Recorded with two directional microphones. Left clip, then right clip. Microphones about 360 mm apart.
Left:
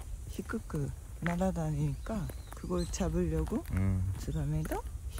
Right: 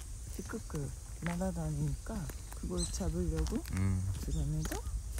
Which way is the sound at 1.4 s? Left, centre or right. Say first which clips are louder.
Left 5 dB; left.